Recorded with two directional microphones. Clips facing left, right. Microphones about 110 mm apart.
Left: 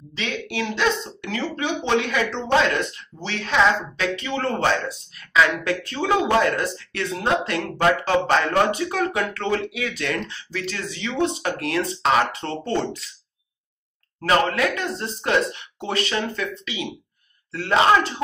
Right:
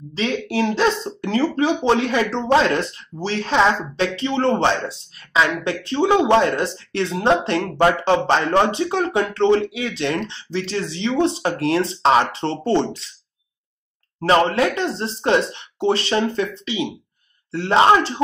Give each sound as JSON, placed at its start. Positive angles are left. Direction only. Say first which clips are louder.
{"t": 0.1, "sound": "speech", "louder": "right 6 dB", "side_deg": -35}
{"t": 14.2, "sound": "speech", "louder": "right 4 dB", "side_deg": -30}